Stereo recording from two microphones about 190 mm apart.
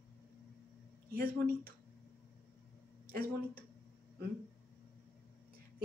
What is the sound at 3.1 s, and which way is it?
Speech, 50° right (ahead or behind).